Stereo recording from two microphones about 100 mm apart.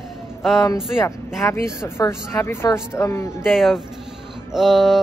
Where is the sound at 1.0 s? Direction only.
25° left (ahead or behind).